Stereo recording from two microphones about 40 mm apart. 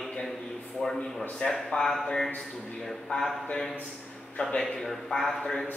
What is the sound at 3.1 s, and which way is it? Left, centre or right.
Speech, left.